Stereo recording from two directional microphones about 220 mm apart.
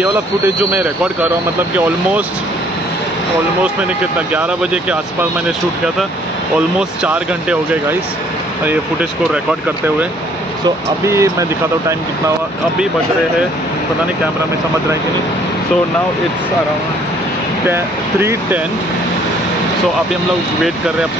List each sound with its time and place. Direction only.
4.3 s speech: 5° right (ahead or behind)
6.8 s speech: 5° right (ahead or behind)
11.1 s speech: 15° right (ahead or behind)